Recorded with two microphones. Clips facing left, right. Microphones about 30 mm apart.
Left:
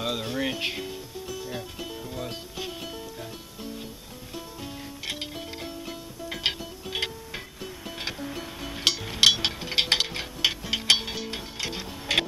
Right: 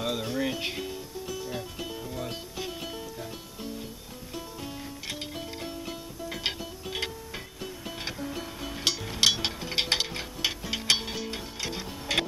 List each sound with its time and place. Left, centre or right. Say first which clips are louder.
0.0 s music: left 1 dB; centre
0.7 s music: even; centre
5.3 s music: even; centre
6.4 s music: left 4 dB; left
6.9 s music: left 3 dB; centre
8.8 s a sound: left 4 dB; centre
10.7 s mechanisms: left 3 dB; centre